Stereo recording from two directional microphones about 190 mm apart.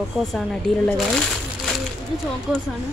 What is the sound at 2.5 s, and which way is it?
Speech, 5° right (ahead or behind).